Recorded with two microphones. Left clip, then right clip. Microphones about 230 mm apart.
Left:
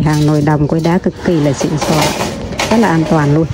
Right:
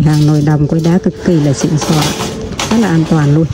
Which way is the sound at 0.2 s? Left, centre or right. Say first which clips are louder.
Left 1 dB; right.